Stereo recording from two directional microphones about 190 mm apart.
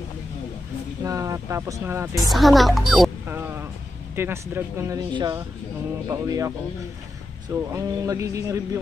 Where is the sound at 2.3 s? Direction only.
Centre (ahead or behind).